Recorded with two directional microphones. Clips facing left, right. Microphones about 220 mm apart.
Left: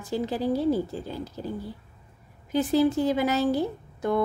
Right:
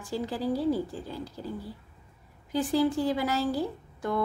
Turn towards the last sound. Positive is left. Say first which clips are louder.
# left 5 dB
turn(degrees=20)  # may be behind; listen again after turning